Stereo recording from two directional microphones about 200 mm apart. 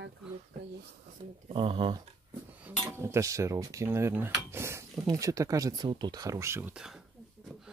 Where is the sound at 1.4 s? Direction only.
25° right (ahead or behind).